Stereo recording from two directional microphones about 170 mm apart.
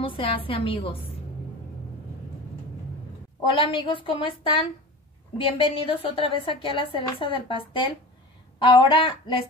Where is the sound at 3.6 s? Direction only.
30° left (ahead or behind).